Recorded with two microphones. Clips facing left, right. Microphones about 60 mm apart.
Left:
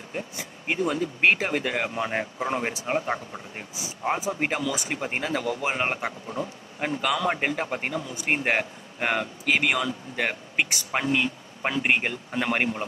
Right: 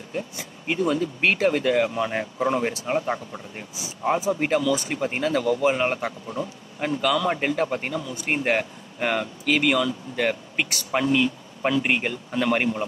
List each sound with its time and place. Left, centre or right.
0.7 s a man's voice: centre